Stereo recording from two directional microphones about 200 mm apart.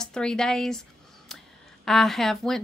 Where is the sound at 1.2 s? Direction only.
Centre (ahead or behind).